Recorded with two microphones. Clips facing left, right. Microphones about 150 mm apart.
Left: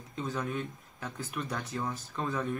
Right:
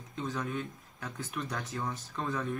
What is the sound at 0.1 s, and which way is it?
Speech, 5° left (ahead or behind).